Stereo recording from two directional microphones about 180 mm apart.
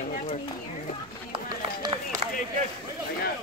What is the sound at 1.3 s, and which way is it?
Run, 25° right (ahead or behind).